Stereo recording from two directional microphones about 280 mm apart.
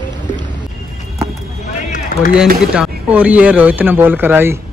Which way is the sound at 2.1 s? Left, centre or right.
Left.